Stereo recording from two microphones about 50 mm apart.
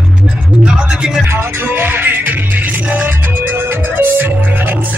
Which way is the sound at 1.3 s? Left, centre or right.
Right.